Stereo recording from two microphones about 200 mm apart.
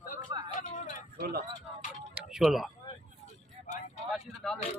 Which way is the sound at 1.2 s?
50° right (ahead or behind).